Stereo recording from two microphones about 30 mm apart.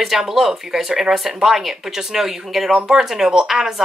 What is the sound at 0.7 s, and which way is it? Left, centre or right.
Speech, centre.